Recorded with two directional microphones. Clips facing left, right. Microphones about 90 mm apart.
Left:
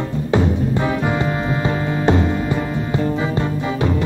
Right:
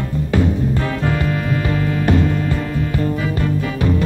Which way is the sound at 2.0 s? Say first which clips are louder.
Left 1 dB; 20° left (ahead or behind).